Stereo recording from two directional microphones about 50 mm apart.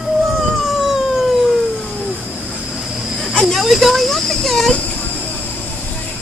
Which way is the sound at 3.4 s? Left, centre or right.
Centre.